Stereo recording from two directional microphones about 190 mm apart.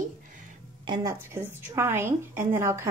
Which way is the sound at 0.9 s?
15° right (ahead or behind).